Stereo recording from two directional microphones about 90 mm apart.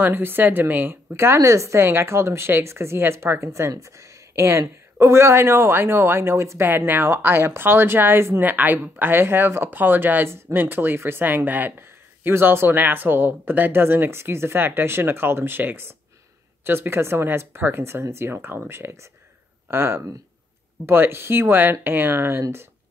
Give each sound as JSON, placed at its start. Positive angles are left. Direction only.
{"t": 0.0, "sound": "speech", "side_deg": -25}